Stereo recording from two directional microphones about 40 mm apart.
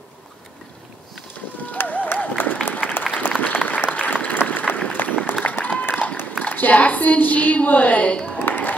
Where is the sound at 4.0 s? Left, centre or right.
Left.